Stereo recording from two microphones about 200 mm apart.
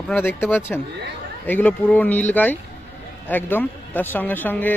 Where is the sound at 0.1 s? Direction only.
10° left (ahead or behind).